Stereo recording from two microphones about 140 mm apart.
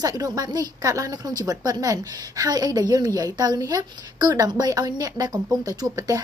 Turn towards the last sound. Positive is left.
turn(degrees=-25)  # may be behind; listen again after turning